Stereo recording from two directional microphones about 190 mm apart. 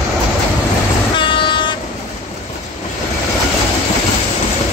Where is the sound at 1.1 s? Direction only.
25° left (ahead or behind).